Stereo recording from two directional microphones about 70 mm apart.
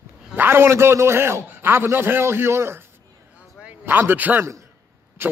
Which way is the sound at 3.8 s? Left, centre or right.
Right.